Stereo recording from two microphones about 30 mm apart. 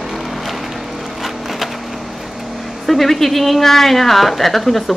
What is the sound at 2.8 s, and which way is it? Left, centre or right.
A woman's voice, centre.